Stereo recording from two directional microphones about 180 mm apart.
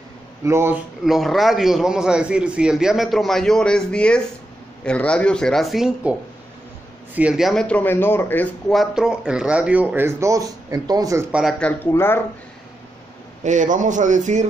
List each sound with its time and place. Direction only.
0.5 s speech: 15° right (ahead or behind)
1.0 s speech: centre (ahead or behind)
7.2 s speech: 5° right (ahead or behind)
11.3 s speech: centre (ahead or behind)
13.4 s a man's voice: 45° right (ahead or behind)